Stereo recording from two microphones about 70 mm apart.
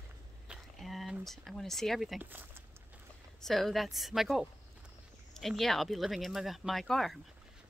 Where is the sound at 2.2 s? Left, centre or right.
Right.